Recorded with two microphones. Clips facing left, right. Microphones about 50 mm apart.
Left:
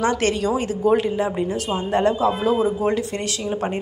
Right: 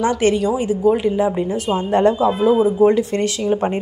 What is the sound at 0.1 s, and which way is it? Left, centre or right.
Speech, right.